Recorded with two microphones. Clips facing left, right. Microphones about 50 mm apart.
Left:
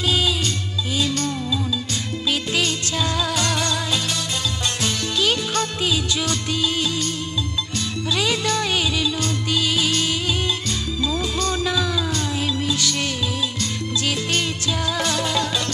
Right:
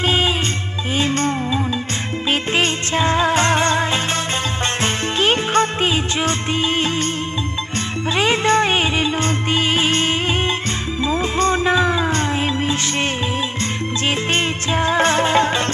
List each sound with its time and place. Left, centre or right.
0.0 s music: right
4.8 s music of bollywood: right
8.2 s music: right
14.0 s music: right